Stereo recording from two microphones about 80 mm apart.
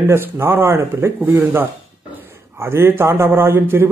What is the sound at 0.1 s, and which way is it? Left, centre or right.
A man's voice, right.